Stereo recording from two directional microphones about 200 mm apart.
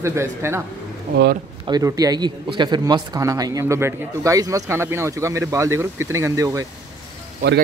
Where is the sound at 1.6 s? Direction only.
20° right (ahead or behind).